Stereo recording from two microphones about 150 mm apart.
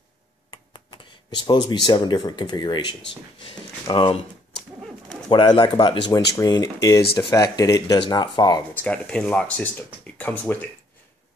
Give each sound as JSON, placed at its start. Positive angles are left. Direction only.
{"t": 0.5, "sound": "speech", "side_deg": 30}
{"t": 5.3, "sound": "speech", "side_deg": 30}
{"t": 8.7, "sound": "speech", "side_deg": 10}